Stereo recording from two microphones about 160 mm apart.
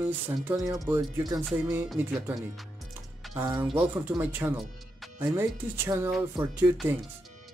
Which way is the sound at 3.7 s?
10° right (ahead or behind).